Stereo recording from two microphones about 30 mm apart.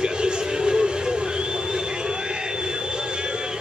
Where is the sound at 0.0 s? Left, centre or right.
Right.